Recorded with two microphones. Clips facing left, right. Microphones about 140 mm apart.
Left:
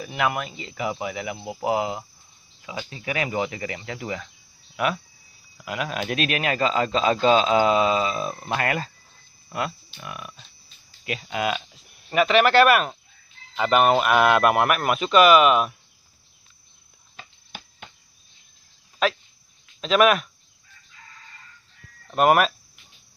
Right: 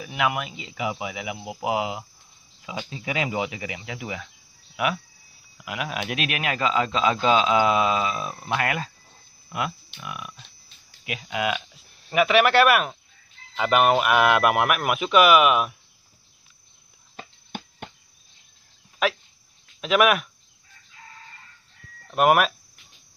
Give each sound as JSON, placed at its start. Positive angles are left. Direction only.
{"t": 0.0, "sound": "speech", "side_deg": -5}
{"t": 2.9, "sound": "a man's voice", "side_deg": -20}
{"t": 10.0, "sound": "a man's voice", "side_deg": -10}
{"t": 17.2, "sound": "a sound", "side_deg": -50}
{"t": 19.8, "sound": "speech", "side_deg": -10}
{"t": 22.1, "sound": "a man's voice", "side_deg": -5}